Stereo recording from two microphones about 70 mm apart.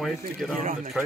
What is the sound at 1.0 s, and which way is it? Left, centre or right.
Speech, centre.